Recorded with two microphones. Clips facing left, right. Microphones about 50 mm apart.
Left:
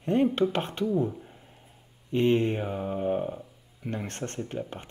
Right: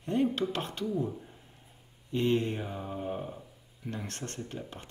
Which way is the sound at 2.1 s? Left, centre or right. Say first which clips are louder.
Left 5 dB; left.